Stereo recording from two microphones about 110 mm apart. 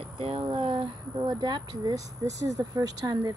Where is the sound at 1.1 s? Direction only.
35° right (ahead or behind).